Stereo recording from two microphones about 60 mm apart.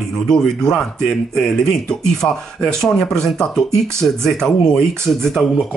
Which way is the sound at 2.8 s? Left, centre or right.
Centre.